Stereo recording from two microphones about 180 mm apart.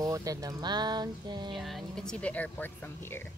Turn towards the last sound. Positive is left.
turn(degrees=10)  # may be behind; listen again after turning